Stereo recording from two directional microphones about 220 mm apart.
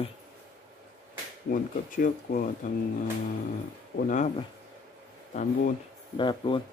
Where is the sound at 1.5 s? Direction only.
40° left (ahead or behind).